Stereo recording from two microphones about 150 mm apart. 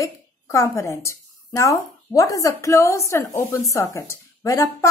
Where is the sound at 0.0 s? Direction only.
20° left (ahead or behind).